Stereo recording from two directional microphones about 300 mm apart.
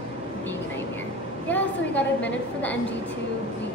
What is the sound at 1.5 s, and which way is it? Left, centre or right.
A woman's voice, centre.